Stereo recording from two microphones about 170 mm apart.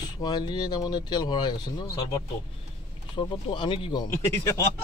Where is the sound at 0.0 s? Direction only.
25° left (ahead or behind).